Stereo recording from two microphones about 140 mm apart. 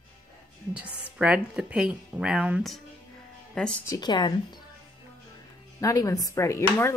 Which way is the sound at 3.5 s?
5° left (ahead or behind).